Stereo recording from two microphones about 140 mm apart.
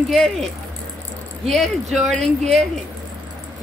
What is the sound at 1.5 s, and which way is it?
Speech, centre (ahead or behind).